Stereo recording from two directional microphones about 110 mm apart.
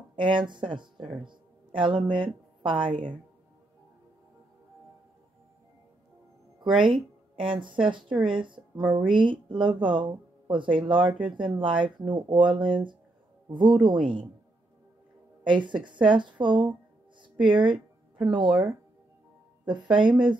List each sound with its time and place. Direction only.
0.1 s speech: 45° right (ahead or behind)
1.2 s music: 45° right (ahead or behind)
2.6 s speech: 45° right (ahead or behind)
6.8 s speech: 50° right (ahead or behind)
15.4 s speech: 45° right (ahead or behind)
18.5 s speech: 15° right (ahead or behind)
19.6 s speech: 5° right (ahead or behind)
19.9 s speech: 45° right (ahead or behind)